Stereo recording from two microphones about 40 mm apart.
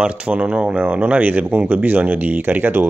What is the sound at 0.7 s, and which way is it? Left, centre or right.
Speech, right.